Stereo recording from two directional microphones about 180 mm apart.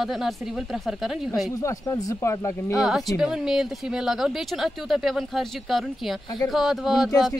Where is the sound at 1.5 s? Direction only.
20° left (ahead or behind).